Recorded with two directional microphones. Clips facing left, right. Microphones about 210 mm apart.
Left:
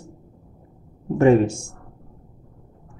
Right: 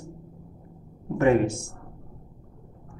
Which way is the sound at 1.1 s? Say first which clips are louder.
Left 5 dB; 30° left (ahead or behind).